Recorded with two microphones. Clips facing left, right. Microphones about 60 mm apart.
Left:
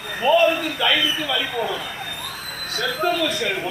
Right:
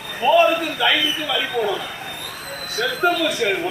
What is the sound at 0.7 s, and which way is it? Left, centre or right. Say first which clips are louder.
Speech: right 1 dB; centre.